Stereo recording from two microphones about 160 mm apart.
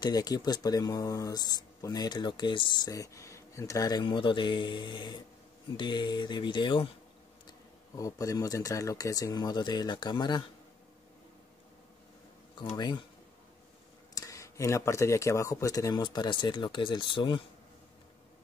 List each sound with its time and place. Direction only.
0.0 s speech: 25° left (ahead or behind)
7.9 s speech: 20° left (ahead or behind)
12.5 s speech: 25° left (ahead or behind)
14.1 s speech: 20° left (ahead or behind)